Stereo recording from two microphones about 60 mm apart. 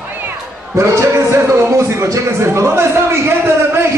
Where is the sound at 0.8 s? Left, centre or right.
Right.